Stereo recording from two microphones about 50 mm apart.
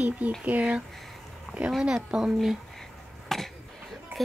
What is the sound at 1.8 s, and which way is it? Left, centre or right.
Speech, centre.